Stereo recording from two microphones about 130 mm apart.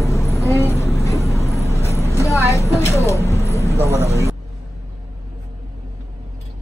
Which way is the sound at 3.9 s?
20° right (ahead or behind).